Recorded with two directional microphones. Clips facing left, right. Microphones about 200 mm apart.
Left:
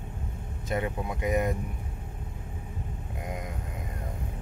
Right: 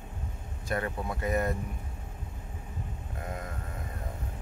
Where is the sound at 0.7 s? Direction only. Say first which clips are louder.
Left 2 dB; 15° left (ahead or behind).